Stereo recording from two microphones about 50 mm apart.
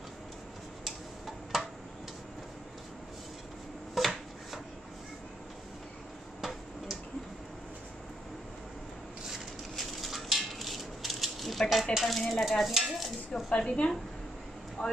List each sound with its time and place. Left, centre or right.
0.8 s tick-tock: centre
3.9 s chopping: centre
9.8 s a sound: centre
11.9 s speech: centre
12.3 s stir: centre
13.5 s a woman's voice: centre
14.8 s speech: left